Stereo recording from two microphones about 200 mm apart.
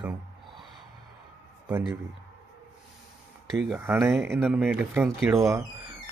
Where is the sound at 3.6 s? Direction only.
10° right (ahead or behind).